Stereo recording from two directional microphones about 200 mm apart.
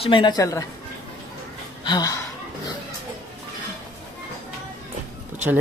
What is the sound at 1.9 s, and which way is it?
Speech, 20° left (ahead or behind).